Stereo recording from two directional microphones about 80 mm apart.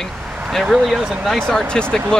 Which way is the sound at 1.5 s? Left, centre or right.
Centre.